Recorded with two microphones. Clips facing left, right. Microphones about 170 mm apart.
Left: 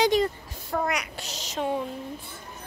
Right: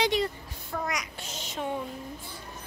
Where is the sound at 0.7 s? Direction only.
60° left (ahead or behind).